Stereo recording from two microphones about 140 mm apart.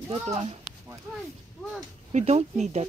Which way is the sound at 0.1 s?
45° right (ahead or behind).